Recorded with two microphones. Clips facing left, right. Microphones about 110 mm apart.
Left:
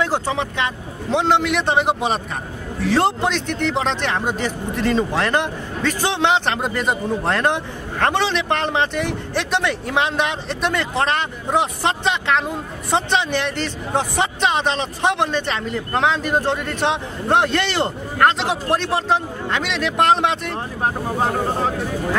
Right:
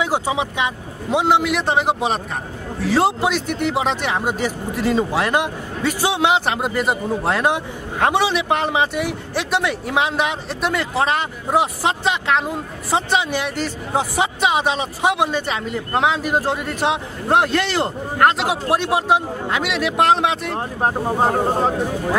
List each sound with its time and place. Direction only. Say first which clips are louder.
0.0 s speech: right 1 dB; 10° right (ahead or behind)
20.5 s speech: right 2 dB; 40° right (ahead or behind)